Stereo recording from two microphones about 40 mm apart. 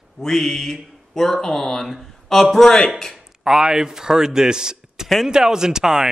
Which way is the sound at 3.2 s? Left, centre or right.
Centre.